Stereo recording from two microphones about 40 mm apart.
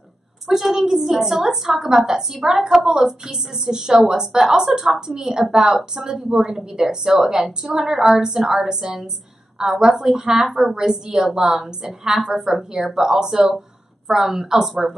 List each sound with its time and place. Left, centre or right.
0.5 s a woman's voice: centre